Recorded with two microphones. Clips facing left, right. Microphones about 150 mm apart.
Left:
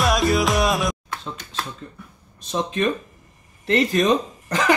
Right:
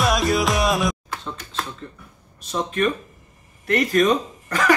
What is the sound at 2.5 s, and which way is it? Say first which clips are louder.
Speech: even; 20° left (ahead or behind).